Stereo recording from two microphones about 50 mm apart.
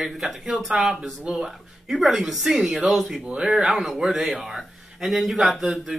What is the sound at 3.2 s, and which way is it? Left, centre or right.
A man's voice, centre.